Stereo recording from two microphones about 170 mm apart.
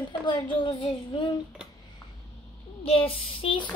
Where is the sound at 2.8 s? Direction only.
35° left (ahead or behind).